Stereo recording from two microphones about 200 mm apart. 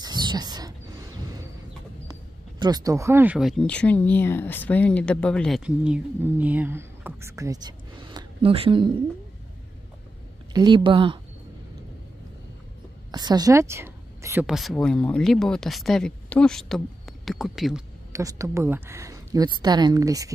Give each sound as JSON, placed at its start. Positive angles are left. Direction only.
{"t": 0.0, "sound": "a sound", "side_deg": -20}
{"t": 2.6, "sound": "speech", "side_deg": -20}
{"t": 10.5, "sound": "speech", "side_deg": -20}
{"t": 13.1, "sound": "a woman's voice", "side_deg": -20}
{"t": 14.4, "sound": "speech", "side_deg": 0}
{"t": 18.1, "sound": "speech", "side_deg": -15}